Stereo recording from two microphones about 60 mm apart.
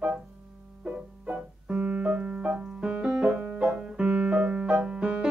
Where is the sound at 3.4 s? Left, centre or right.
Right.